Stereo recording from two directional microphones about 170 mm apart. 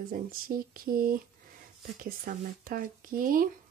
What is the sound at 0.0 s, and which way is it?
Speech, 60° right (ahead or behind).